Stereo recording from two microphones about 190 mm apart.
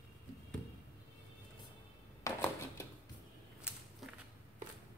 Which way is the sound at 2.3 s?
15° left (ahead or behind).